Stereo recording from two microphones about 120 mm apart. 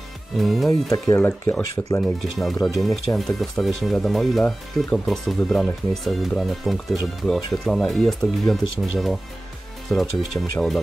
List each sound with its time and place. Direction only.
0.4 s speech: centre (ahead or behind)
0.9 s speech: 20° left (ahead or behind)
2.3 s speech: centre (ahead or behind)
10.3 s speech: 25° left (ahead or behind)